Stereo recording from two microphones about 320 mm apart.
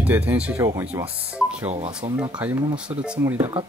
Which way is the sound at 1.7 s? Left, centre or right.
Centre.